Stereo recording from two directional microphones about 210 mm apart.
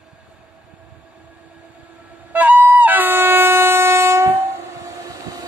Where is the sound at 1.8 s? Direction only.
5° right (ahead or behind).